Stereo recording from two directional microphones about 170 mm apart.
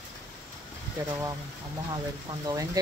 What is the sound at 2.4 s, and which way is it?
Speech, 20° right (ahead or behind).